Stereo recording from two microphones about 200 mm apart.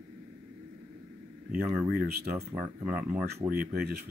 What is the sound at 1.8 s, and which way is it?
Speech, 50° right (ahead or behind).